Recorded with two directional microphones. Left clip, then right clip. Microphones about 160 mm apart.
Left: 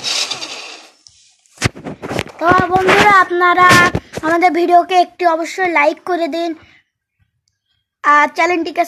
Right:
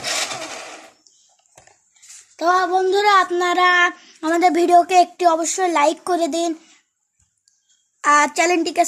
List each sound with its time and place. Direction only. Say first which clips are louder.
0.3 s a sound: left 5 dB; 30° right (ahead or behind)
2.3 s speech: left 4 dB; centre (ahead or behind)
8.0 s a woman's voice: left 4 dB; 5° right (ahead or behind)